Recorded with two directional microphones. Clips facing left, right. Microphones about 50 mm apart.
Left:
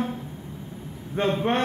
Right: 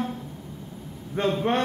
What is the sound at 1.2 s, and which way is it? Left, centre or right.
Speech, centre.